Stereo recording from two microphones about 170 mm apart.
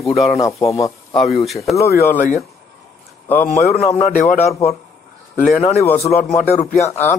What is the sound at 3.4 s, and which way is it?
Speech, 40° left (ahead or behind).